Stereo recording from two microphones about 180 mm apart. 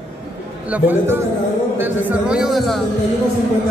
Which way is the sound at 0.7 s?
10° right (ahead or behind).